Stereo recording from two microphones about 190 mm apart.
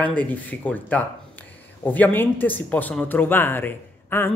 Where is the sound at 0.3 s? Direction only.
10° left (ahead or behind).